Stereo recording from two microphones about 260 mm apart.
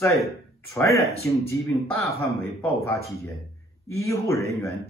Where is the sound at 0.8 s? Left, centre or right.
Centre.